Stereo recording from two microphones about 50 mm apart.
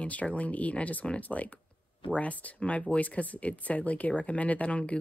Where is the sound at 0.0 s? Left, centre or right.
Left.